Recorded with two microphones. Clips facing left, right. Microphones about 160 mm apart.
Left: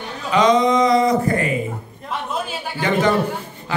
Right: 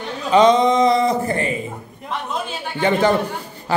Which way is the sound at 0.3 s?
30° right (ahead or behind).